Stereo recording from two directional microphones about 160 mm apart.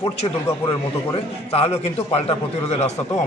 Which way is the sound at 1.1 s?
35° left (ahead or behind).